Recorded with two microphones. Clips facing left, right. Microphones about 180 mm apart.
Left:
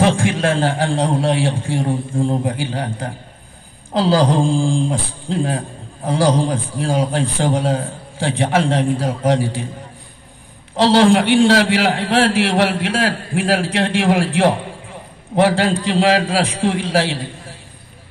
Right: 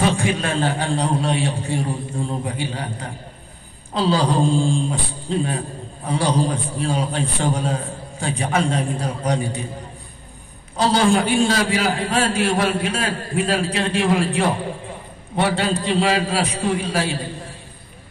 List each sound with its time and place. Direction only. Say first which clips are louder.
0.0 s a man's voice: left 4 dB; 90° left
10.8 s a man's voice: left 5 dB; 90° left